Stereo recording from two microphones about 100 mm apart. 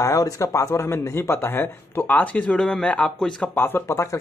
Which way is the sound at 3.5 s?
25° left (ahead or behind).